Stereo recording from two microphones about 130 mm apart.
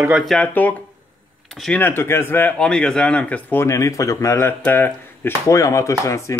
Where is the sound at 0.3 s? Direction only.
10° left (ahead or behind).